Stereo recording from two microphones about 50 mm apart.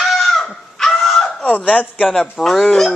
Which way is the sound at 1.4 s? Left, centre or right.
Left.